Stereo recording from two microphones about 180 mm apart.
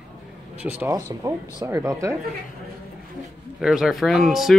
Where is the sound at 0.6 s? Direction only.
15° right (ahead or behind).